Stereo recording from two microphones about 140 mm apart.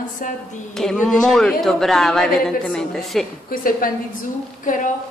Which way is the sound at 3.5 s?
90° left.